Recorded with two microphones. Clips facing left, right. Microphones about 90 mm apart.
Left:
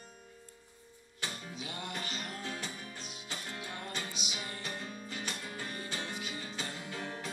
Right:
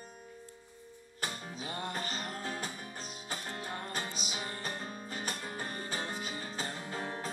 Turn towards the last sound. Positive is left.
turn(degrees=-40)  # may be behind; listen again after turning